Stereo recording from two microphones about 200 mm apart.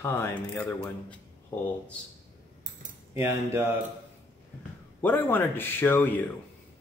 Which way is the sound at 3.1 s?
15° right (ahead or behind).